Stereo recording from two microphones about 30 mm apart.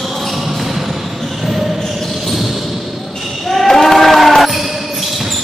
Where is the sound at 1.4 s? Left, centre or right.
Centre.